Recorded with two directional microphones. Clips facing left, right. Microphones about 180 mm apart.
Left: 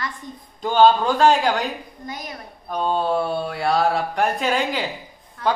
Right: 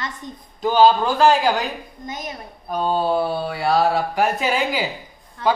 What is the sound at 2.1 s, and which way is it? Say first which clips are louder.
Speech: right 2 dB; 20° right (ahead or behind).